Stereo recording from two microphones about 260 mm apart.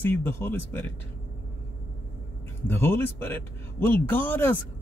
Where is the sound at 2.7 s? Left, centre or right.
Centre.